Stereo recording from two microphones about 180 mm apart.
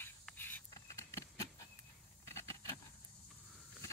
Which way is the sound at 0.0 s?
10° left (ahead or behind).